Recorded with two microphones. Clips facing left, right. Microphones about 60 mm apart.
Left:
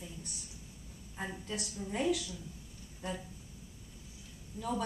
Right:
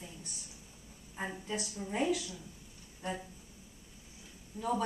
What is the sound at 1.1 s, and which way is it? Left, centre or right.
Speech, centre.